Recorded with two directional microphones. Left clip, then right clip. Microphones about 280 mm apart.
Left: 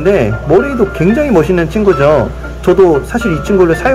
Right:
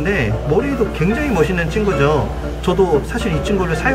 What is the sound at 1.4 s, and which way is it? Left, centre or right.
Speech, centre.